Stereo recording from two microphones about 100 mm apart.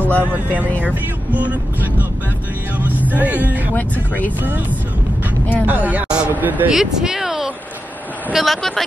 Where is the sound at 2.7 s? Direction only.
15° right (ahead or behind).